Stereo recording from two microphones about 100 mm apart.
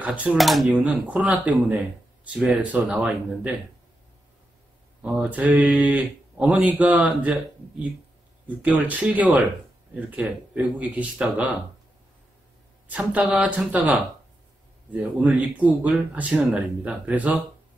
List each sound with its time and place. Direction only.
0.0 s speech: 15° right (ahead or behind)
0.4 s speech: centre (ahead or behind)
0.7 s speech: 15° right (ahead or behind)
5.0 s speech: 15° right (ahead or behind)
8.5 s speech: 15° right (ahead or behind)
10.5 s speech: 15° right (ahead or behind)
12.8 s speech: 15° right (ahead or behind)